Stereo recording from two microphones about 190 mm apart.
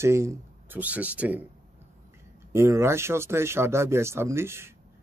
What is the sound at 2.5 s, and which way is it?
Speech, 15° right (ahead or behind).